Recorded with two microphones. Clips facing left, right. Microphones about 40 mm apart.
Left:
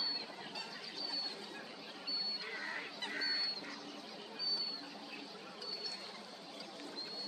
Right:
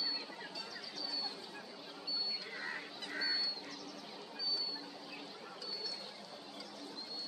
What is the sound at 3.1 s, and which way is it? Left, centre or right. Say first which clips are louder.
Duck: right 2 dB; centre.